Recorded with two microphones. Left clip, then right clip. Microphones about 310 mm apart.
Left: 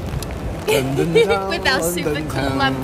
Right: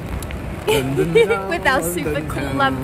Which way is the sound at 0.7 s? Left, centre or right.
Centre.